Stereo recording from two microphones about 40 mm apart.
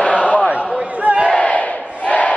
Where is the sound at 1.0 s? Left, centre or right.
Right.